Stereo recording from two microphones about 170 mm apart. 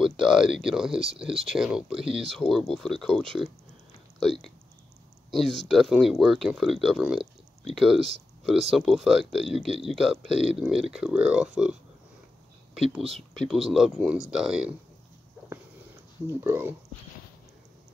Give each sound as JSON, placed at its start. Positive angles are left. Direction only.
{"t": 0.0, "sound": "speech", "side_deg": -5}
{"t": 2.0, "sound": "speech", "side_deg": -35}
{"t": 2.3, "sound": "speech", "side_deg": 0}
{"t": 13.3, "sound": "speech", "side_deg": 0}
{"t": 16.3, "sound": "speech", "side_deg": -15}